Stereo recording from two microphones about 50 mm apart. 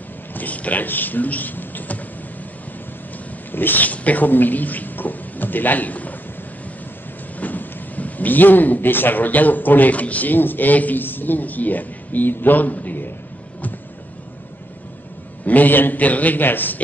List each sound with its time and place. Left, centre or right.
0.3 s speech: left
3.5 s speech: left
7.3 s speech: left
15.4 s speech: left